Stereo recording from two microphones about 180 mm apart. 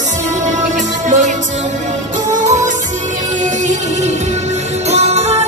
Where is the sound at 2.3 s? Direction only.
40° right (ahead or behind).